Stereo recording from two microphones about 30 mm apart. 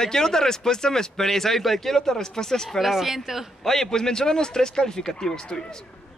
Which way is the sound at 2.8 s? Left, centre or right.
Centre.